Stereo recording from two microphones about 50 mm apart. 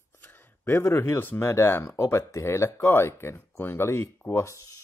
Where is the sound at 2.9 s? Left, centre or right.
Left.